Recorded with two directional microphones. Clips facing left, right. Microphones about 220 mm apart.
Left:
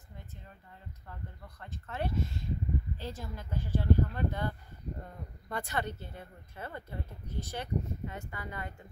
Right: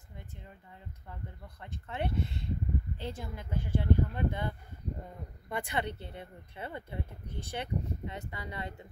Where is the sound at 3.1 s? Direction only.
55° right (ahead or behind).